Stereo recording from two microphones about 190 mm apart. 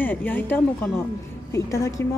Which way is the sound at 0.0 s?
10° left (ahead or behind).